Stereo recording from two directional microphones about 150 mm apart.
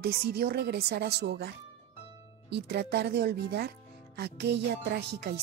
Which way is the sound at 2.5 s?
90° right.